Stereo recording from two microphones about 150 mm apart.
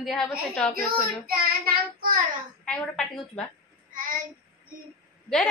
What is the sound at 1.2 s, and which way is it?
Child singing, 85° right.